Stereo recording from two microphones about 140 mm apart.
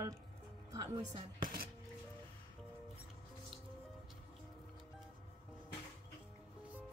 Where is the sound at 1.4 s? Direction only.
90° right.